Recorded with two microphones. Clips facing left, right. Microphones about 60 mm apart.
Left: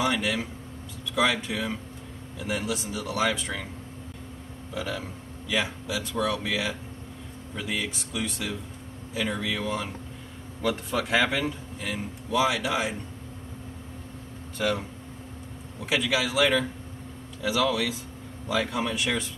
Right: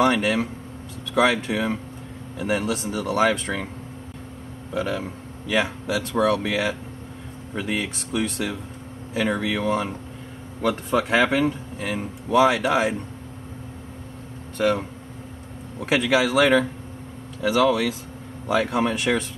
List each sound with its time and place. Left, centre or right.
0.0 s speech: right
4.7 s speech: right
14.6 s speech: right
15.8 s speech: right